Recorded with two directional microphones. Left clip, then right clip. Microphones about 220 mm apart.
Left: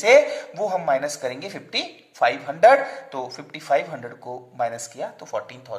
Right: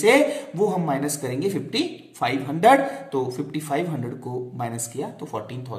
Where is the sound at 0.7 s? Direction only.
35° left (ahead or behind).